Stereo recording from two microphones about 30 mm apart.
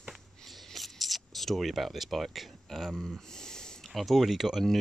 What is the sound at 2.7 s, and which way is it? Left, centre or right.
Speech, centre.